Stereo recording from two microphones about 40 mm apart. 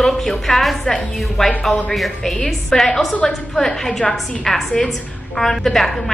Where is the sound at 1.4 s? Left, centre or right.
Centre.